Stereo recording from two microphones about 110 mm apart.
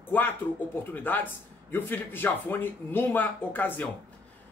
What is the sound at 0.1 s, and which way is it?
Speech, 20° left (ahead or behind).